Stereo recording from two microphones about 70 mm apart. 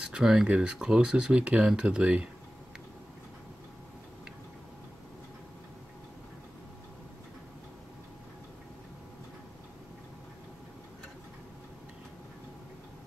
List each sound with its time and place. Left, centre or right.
0.0 s speech: centre